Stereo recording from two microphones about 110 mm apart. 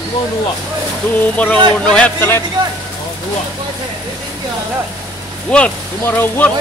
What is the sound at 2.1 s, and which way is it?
Speech, 20° left (ahead or behind).